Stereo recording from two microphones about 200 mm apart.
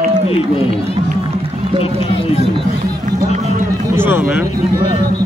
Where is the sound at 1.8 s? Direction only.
30° left (ahead or behind).